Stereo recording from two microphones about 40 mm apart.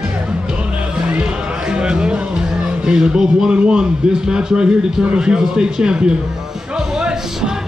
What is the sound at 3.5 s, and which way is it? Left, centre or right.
Speech, right.